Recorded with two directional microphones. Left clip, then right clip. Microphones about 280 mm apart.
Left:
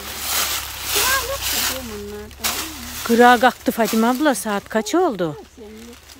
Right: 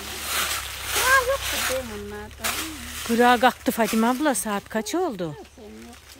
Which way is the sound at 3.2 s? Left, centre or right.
Centre.